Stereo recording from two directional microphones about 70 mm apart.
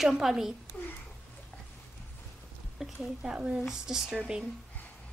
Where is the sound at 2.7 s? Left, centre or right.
Centre.